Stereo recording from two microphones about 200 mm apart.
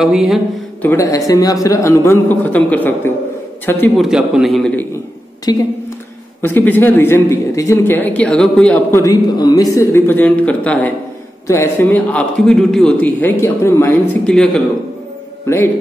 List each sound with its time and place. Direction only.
0.0 s a man's voice: centre (ahead or behind)
0.8 s a man's voice: 15° left (ahead or behind)
5.5 s a man's voice: 20° left (ahead or behind)